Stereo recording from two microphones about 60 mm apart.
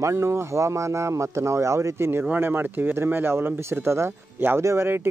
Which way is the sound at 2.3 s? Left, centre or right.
Right.